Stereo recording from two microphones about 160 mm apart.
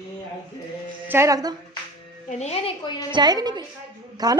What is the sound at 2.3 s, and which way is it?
Speech, 40° left (ahead or behind).